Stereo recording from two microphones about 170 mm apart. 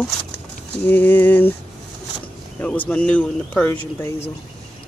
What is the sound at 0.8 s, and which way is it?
Speech, 10° left (ahead or behind).